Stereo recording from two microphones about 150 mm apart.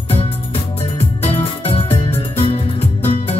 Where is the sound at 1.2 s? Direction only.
40° left (ahead or behind).